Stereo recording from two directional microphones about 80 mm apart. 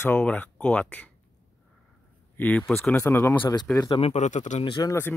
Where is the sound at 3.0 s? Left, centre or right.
Left.